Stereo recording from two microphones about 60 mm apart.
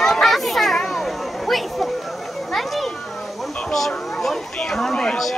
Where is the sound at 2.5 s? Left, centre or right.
Centre.